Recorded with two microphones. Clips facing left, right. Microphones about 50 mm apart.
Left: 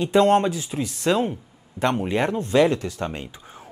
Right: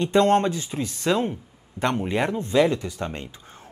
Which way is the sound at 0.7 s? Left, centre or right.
Centre.